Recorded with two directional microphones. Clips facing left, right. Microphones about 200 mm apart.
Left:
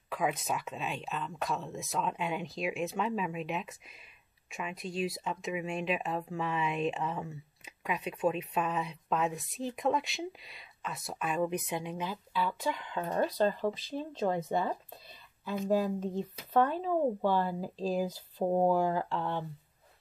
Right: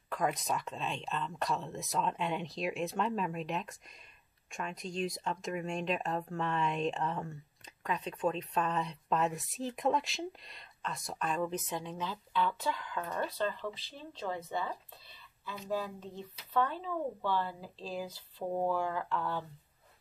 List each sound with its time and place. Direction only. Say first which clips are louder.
0.1 s speech: left 1 dB; 5° left (ahead or behind); by 13.1 s 25° left (ahead or behind)
13.1 s speech: left 7 dB; 40° left (ahead or behind); by 19.4 s 25° left (ahead or behind)